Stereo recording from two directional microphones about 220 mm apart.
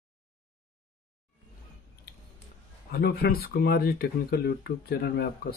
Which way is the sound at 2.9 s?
45° left (ahead or behind).